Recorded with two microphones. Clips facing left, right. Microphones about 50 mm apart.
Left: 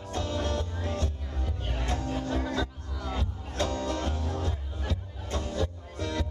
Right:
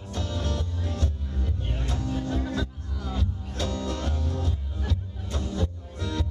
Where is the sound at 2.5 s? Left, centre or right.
Centre.